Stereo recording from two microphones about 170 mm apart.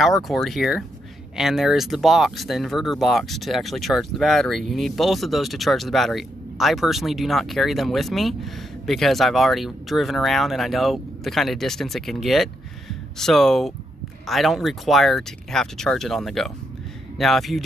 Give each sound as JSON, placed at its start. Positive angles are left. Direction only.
{"t": 0.0, "sound": "speech", "side_deg": 0}